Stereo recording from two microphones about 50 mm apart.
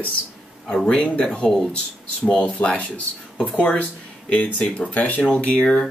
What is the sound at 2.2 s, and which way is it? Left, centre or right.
Speech, left.